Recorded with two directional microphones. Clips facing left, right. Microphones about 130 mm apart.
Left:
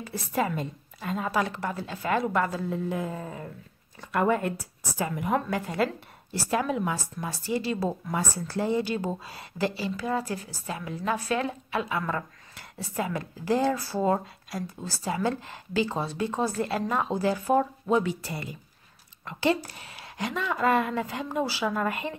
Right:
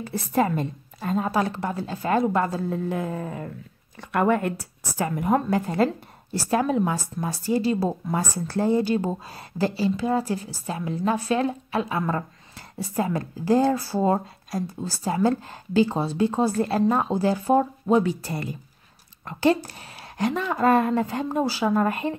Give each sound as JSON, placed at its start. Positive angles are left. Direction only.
{"t": 0.0, "sound": "a woman's voice", "side_deg": -45}
{"t": 2.7, "sound": "a woman's voice", "side_deg": -55}
{"t": 18.2, "sound": "a woman's voice", "side_deg": -45}